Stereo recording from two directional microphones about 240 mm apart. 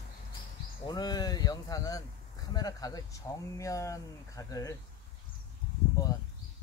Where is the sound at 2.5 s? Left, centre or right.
Centre.